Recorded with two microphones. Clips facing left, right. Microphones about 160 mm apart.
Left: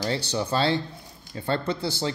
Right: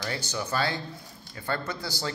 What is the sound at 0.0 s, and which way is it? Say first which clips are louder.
Speech: left 6 dB; 30° left (ahead or behind).